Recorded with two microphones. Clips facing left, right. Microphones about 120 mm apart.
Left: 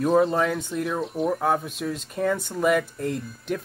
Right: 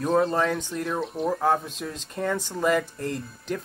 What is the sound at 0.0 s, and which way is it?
Speech, centre (ahead or behind).